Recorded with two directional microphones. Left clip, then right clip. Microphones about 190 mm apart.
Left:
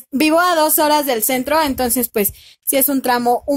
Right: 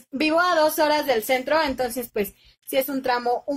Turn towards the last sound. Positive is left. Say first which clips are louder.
# left 7 dB
turn(degrees=50)  # may be behind; listen again after turning